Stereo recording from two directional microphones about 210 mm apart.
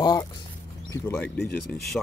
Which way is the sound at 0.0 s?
20° left (ahead or behind).